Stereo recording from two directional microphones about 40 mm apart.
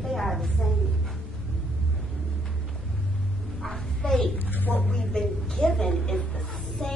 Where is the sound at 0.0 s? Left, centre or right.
Centre.